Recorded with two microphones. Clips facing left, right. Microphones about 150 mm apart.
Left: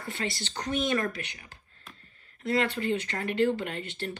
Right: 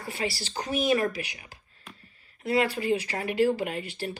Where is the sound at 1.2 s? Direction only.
10° right (ahead or behind).